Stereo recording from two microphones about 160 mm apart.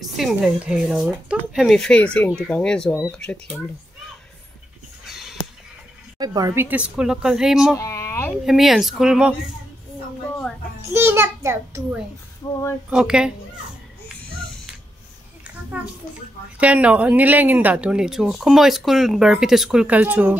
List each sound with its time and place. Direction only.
0.0 s speech: centre (ahead or behind)
5.0 s a sound: centre (ahead or behind)
6.1 s speech: 25° right (ahead or behind); by 7.7 s 5° right (ahead or behind)
7.7 s speech: 20° left (ahead or behind)
8.5 s speech: centre (ahead or behind)
10.9 s a child's voice: 15° right (ahead or behind)
12.9 s speech: 5° right (ahead or behind)
15.8 s speech: 10° right (ahead or behind)